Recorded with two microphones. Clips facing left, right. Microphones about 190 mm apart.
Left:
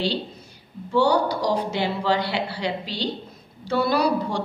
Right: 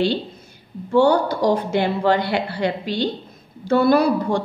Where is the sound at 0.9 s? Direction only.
50° right (ahead or behind).